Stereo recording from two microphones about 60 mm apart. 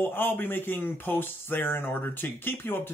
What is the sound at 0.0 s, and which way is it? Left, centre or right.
Speech, left.